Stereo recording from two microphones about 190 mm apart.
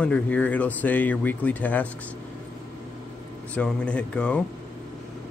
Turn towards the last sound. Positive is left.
turn(degrees=5)  # may be behind; listen again after turning